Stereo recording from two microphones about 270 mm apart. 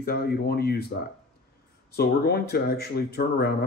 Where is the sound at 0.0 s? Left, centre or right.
Left.